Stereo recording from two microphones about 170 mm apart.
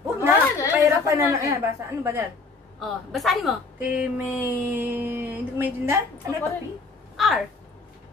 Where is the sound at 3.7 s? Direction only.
10° right (ahead or behind).